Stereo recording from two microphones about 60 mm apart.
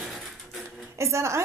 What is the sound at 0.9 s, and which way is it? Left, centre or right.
Speech, right.